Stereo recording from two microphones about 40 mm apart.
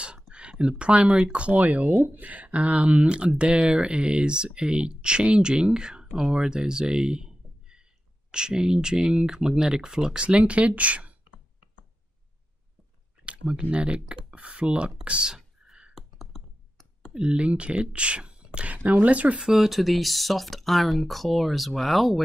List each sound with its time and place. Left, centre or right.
0.3 s a sound: right
1.1 s speech: right
1.6 s speech: right; by 10.1 s centre
10.1 s speech: right
13.2 s a sound: right
13.6 s speech: right
15.2 s whispering: centre
15.9 s clicking: centre
17.1 s speech: right
18.9 s speech: right
19.4 s speech: centre